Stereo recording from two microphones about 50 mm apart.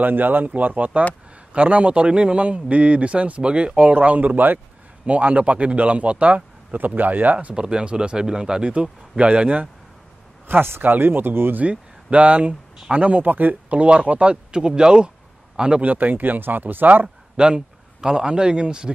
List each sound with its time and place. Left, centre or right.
0.0 s a man's voice: right
7.5 s a man's voice: centre
10.4 s speech: right
11.6 s speech: right
13.7 s a man's voice: right
15.8 s speech: right
17.4 s a man's voice: centre